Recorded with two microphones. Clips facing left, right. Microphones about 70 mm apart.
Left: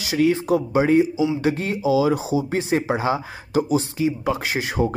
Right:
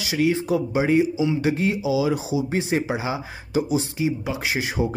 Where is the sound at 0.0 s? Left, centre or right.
Left.